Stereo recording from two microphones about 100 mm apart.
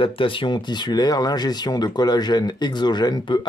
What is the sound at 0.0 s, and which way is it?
Speech, 60° left (ahead or behind).